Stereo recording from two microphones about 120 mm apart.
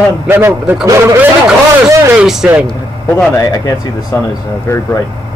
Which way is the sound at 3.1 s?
25° left (ahead or behind).